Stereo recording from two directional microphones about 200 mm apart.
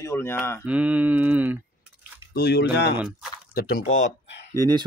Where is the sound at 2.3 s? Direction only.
50° left (ahead or behind).